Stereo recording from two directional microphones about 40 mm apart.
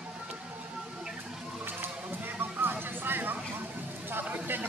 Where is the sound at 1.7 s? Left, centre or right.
Right.